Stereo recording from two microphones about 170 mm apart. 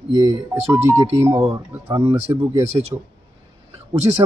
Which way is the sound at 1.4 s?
30° right (ahead or behind).